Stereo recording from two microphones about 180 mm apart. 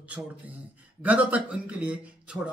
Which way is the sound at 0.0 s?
10° right (ahead or behind).